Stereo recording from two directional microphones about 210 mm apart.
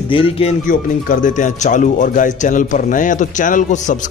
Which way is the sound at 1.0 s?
40° left (ahead or behind).